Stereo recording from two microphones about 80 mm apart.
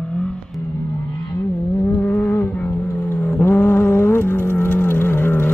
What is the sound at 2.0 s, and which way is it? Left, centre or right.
Music, left.